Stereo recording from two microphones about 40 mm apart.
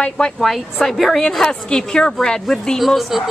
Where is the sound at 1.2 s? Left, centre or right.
Centre.